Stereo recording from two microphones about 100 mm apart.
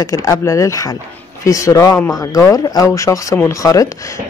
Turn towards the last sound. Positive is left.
turn(degrees=35)  # may be behind; listen again after turning